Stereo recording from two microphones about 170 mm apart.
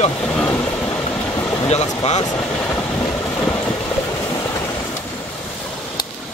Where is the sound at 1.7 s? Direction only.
40° left (ahead or behind).